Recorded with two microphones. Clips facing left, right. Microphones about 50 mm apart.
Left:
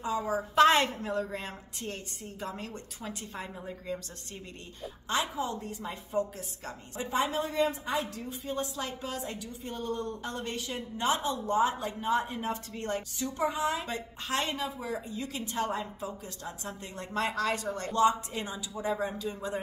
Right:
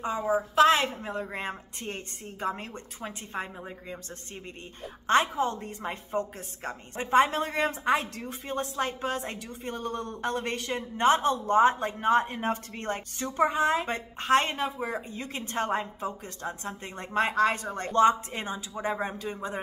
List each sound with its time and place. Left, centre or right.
0.6 s a woman's voice: centre
1.0 s speech: right
5.0 s a woman's voice: right